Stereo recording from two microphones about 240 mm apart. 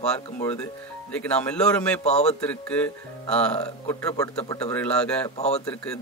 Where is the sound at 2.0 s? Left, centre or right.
Left.